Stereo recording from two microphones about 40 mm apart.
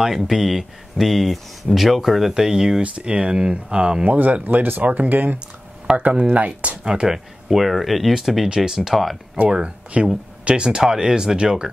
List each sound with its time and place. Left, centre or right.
0.0 s speech: centre
2.3 s speech: centre
2.8 s speech: right
4.2 s speech: right
5.9 s speech: right
6.8 s speech: right
7.1 s speech: centre
9.5 s speech: right